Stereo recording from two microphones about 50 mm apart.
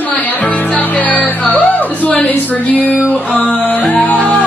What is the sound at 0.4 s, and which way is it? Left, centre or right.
Music, left.